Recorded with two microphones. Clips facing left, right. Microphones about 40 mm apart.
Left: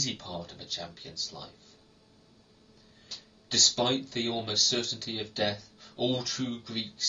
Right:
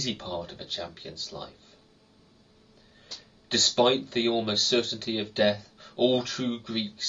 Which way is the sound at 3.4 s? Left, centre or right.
Right.